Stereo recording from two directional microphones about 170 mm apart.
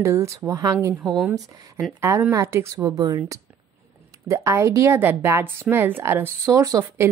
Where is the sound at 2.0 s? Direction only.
15° right (ahead or behind).